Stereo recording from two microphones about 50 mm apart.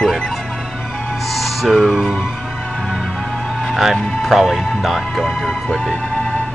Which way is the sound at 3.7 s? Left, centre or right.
Centre.